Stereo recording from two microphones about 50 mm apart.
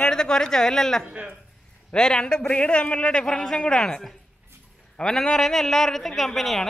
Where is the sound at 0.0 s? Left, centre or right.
Centre.